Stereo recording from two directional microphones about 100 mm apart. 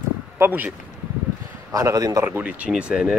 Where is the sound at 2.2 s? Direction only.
20° right (ahead or behind).